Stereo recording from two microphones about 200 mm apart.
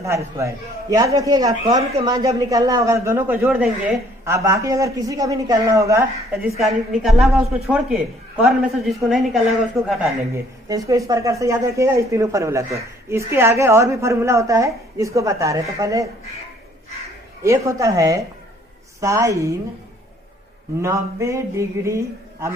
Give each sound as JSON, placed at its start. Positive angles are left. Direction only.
{"t": 0.0, "sound": "speech", "side_deg": -15}
{"t": 6.6, "sound": "a woman's voice", "side_deg": 0}
{"t": 10.3, "sound": "speech", "side_deg": -15}
{"t": 17.4, "sound": "speech", "side_deg": -15}
{"t": 20.8, "sound": "speech", "side_deg": -15}